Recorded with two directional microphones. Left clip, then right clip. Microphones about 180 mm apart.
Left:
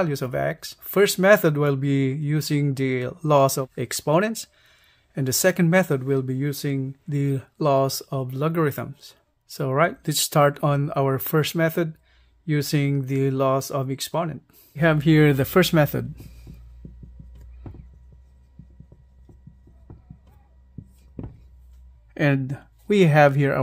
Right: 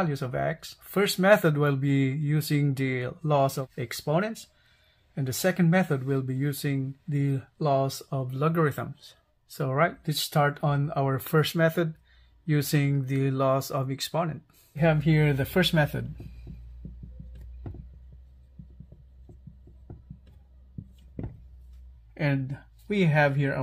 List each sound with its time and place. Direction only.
0.0 s speech: 45° left (ahead or behind); by 16.1 s 75° left (ahead or behind)
22.1 s speech: 60° left (ahead or behind); by 23.6 s 85° left